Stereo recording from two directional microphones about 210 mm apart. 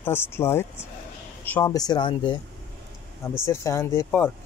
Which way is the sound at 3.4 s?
15° left (ahead or behind).